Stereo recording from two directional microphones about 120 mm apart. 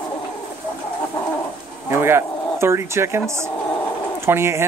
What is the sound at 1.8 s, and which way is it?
Speech, 20° right (ahead or behind).